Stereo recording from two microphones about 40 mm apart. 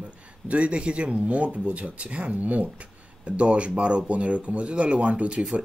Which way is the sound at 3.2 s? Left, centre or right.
Right.